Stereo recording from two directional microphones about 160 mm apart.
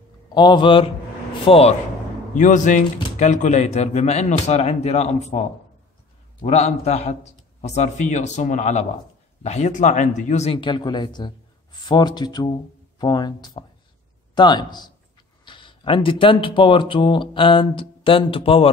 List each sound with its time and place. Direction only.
0.3 s speech: 30° left (ahead or behind)
2.3 s speech: 50° left (ahead or behind); by 18.7 s 35° left (ahead or behind)